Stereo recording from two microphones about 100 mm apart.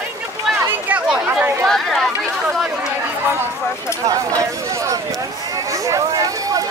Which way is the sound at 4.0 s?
35° right (ahead or behind).